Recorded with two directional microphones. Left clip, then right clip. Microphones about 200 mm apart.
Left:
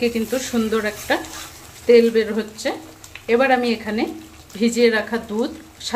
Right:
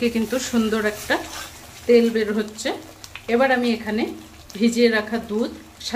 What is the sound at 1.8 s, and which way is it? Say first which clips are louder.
Speech: left 3 dB; 15° left (ahead or behind).